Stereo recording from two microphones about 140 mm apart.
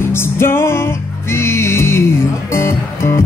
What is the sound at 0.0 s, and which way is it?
Music, 15° left (ahead or behind).